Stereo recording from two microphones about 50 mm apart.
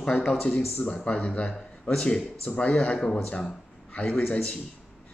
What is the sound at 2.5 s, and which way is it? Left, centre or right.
Speech, left.